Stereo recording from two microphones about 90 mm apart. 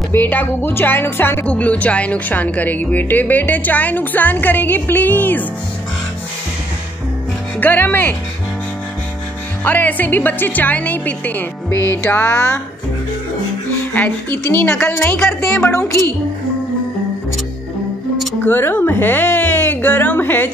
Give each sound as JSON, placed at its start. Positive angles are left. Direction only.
{"t": 0.1, "sound": "speech", "side_deg": 20}
{"t": 1.5, "sound": "speech", "side_deg": 15}
{"t": 7.6, "sound": "speech", "side_deg": 20}
{"t": 9.7, "sound": "speech", "side_deg": 20}
{"t": 13.9, "sound": "speech", "side_deg": 20}
{"t": 15.1, "sound": "speech", "side_deg": 5}
{"t": 18.4, "sound": "speech", "side_deg": 20}